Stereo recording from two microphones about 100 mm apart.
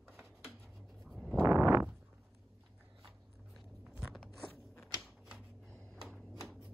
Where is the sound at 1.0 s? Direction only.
Centre (ahead or behind).